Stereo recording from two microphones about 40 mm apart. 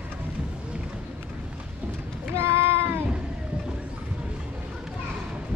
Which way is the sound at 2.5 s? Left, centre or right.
Right.